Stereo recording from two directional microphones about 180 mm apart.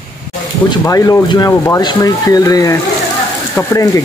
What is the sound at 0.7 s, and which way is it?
Speech, 20° left (ahead or behind).